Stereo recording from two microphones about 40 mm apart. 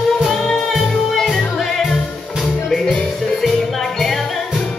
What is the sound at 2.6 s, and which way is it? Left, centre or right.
Music, centre.